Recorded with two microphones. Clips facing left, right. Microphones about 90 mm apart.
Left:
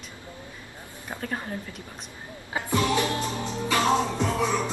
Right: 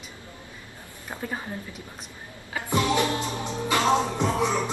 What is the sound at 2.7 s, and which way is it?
Music, 20° right (ahead or behind).